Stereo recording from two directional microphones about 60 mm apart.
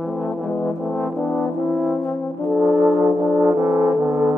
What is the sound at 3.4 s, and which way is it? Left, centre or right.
Brass instrument, right.